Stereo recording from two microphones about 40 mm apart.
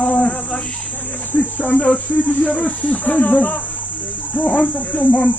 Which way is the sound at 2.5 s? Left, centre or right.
Left.